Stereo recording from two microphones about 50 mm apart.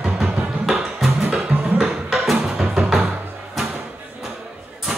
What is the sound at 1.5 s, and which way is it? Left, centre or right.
Music, right.